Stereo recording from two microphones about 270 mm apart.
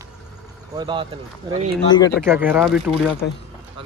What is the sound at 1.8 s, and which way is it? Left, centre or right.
Speech, centre.